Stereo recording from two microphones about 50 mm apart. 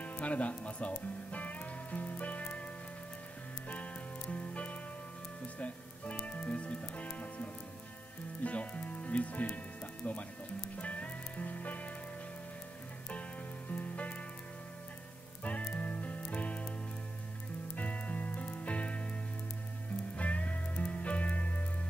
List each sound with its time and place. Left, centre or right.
0.0 s music: left
3.6 s music: left
8.5 s speech: left
10.8 s music: left
13.7 s music: left
15.4 s music: left
17.7 s music: left
20.2 s music: left